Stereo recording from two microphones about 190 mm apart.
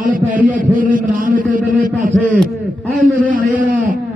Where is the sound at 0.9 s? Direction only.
45° right (ahead or behind).